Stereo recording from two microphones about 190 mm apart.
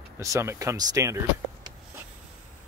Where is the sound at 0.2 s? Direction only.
15° right (ahead or behind).